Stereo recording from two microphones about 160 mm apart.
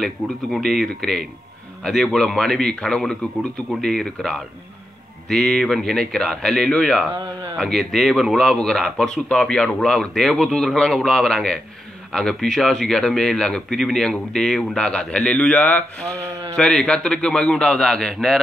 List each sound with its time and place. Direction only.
0.0 s speech: centre (ahead or behind)